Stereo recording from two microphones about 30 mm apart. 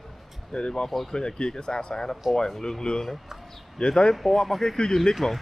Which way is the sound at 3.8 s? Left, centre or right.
Left.